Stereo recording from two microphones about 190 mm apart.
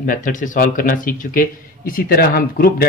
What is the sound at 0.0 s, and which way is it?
Speech, 45° left (ahead or behind).